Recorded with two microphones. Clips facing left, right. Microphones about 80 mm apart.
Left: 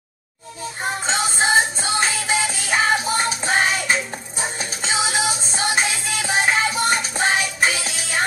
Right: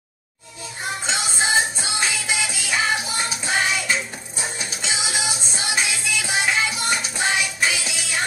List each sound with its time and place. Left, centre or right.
1.0 s music: left